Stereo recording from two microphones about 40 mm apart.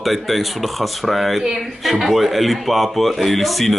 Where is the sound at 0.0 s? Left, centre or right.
Centre.